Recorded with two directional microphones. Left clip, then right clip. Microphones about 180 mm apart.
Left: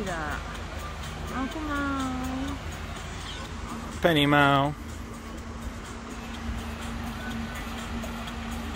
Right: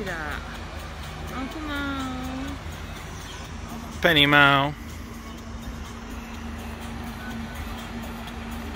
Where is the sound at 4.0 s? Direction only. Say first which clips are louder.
Right 5 dB; 10° left (ahead or behind).